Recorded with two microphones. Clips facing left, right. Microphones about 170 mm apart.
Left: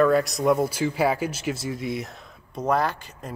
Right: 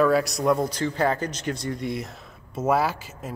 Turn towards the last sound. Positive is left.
turn(degrees=-5)  # may be behind; listen again after turning